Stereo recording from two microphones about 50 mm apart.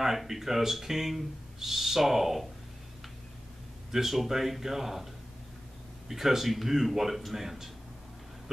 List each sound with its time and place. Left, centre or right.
0.0 s speech: centre
3.9 s speech: centre
6.0 s speech: centre